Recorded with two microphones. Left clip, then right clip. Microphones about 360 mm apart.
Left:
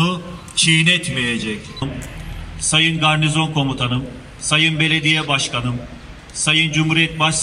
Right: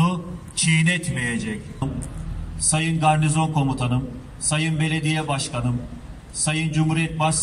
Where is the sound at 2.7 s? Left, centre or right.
Right.